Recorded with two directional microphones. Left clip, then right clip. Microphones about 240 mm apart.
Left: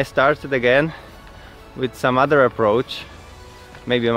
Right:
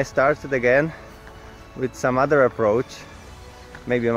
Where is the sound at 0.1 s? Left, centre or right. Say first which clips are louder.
Left 2 dB; centre.